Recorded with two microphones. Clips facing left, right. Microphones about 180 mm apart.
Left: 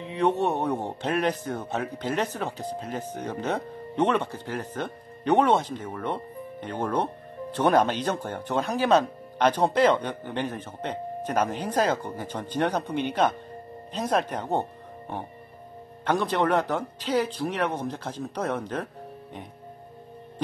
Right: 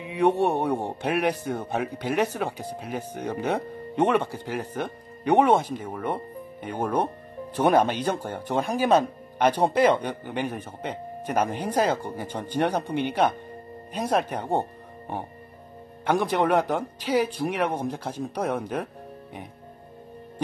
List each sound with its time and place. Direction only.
0.0 s a man's voice: 10° right (ahead or behind)